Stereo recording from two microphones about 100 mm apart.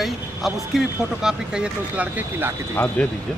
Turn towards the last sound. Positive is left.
turn(degrees=20)  # may be behind; listen again after turning